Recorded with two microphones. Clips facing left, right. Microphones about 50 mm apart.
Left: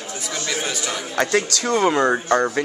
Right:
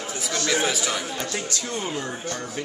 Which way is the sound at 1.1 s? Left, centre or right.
Left.